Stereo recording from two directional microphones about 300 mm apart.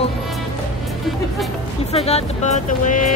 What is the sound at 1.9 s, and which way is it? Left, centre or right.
Speech, left.